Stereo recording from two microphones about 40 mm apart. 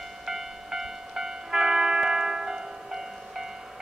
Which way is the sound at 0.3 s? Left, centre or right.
Centre.